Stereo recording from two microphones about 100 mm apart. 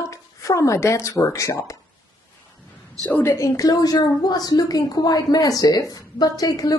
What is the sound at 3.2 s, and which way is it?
A woman's voice, 25° left (ahead or behind).